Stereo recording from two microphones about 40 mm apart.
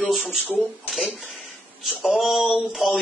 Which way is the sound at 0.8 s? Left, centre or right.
Centre.